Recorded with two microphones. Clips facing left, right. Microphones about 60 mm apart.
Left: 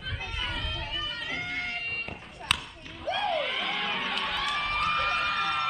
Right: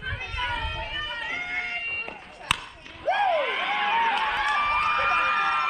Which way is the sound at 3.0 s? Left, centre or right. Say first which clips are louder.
Right 7 dB; right.